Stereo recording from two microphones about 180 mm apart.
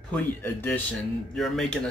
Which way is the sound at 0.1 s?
10° left (ahead or behind).